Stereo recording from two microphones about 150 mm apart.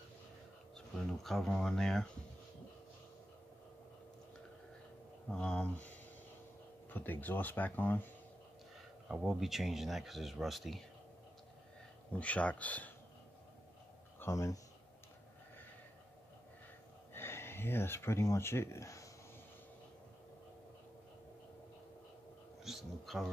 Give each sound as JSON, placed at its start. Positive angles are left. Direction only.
{"t": 0.7, "sound": "speech", "side_deg": 5}
{"t": 5.3, "sound": "speech", "side_deg": 5}
{"t": 9.1, "sound": "speech", "side_deg": -5}
{"t": 12.1, "sound": "speech", "side_deg": 10}
{"t": 14.2, "sound": "speech", "side_deg": 20}
{"t": 17.1, "sound": "speech", "side_deg": 15}
{"t": 22.6, "sound": "a sound", "side_deg": 0}